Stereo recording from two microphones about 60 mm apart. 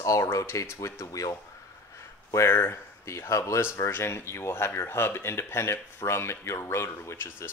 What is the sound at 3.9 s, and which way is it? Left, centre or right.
Speech, left.